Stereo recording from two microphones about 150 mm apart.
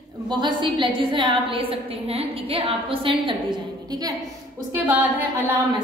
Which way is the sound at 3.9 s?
25° right (ahead or behind).